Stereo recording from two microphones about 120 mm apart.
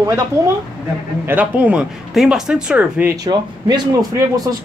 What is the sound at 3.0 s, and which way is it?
Speech, 30° right (ahead or behind).